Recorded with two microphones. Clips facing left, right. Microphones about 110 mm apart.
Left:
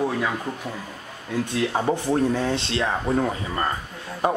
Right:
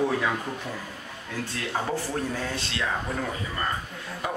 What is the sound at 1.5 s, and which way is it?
Speech, 20° left (ahead or behind).